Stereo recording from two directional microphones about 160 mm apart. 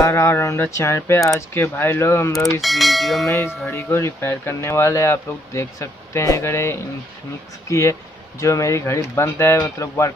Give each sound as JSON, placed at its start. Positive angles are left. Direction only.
{"t": 0.0, "sound": "speech", "side_deg": 15}
{"t": 2.6, "sound": "speech", "side_deg": 0}
{"t": 3.3, "sound": "speech", "side_deg": 15}
{"t": 8.4, "sound": "speech", "side_deg": 20}